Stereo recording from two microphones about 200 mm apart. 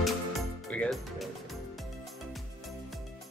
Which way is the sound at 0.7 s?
5° left (ahead or behind).